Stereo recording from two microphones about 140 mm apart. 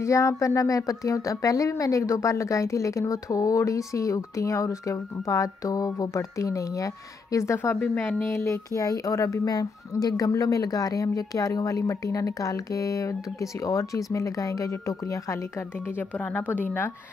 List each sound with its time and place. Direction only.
0.0 s speech: 20° left (ahead or behind)
16.0 s speech: 10° left (ahead or behind)